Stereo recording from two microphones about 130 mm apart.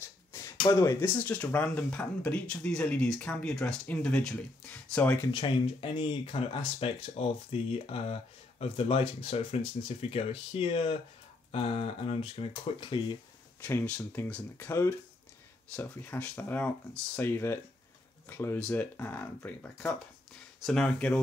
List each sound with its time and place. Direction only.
0.6 s speech: 25° left (ahead or behind)
5.2 s speech: 35° left (ahead or behind)
13.6 s speech: 15° left (ahead or behind)